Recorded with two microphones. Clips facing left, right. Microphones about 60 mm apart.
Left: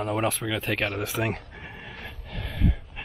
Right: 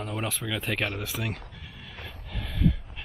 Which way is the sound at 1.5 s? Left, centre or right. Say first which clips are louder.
Left 5 dB; left.